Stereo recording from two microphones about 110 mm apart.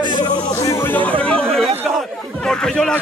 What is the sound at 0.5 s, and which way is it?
Music, 30° left (ahead or behind).